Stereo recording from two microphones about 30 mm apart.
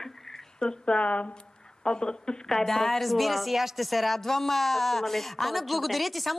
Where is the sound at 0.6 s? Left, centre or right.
Left.